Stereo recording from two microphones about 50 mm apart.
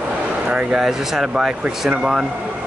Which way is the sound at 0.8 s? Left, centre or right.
Centre.